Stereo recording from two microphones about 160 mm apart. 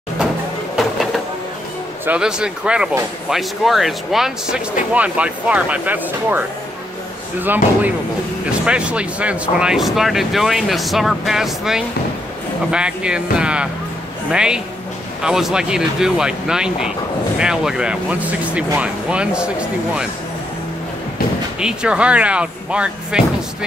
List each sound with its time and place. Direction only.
2.0 s speech: 5° right (ahead or behind)
21.5 s speech: 5° right (ahead or behind)